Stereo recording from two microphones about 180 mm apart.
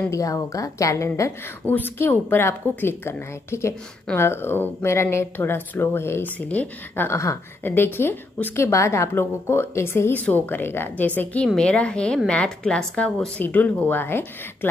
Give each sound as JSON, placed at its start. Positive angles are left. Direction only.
{"t": 0.1, "sound": "a woman's voice", "side_deg": 20}